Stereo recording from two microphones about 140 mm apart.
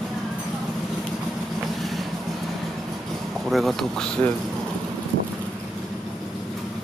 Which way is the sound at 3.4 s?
Centre (ahead or behind).